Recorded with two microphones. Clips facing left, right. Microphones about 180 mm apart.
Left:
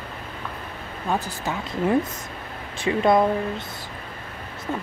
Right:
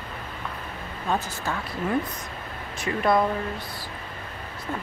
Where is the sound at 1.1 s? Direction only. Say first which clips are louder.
Left 1 dB; 15° left (ahead or behind).